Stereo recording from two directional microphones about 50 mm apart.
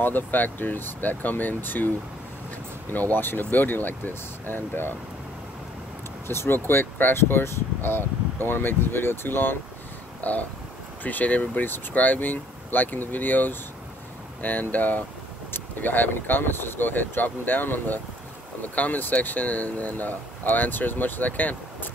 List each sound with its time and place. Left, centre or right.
0.0 s speech: left
2.9 s speech: left
6.2 s speech: left
10.2 s speech: left